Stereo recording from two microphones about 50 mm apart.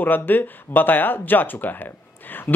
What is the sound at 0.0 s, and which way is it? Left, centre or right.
A man's voice, left.